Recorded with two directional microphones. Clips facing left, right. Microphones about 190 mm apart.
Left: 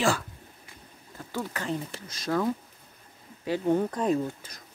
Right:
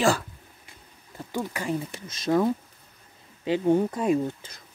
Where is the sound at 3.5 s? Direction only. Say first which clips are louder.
Right 3 dB; 15° right (ahead or behind).